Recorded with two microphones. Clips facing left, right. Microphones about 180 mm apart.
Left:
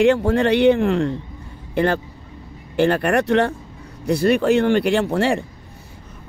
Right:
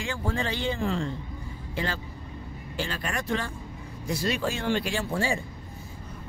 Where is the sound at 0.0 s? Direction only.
70° left (ahead or behind).